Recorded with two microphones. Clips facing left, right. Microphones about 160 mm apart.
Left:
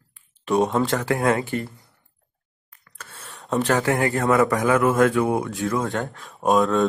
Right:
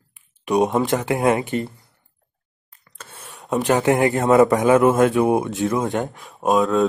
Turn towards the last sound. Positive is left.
turn(degrees=0)  # may be behind; listen again after turning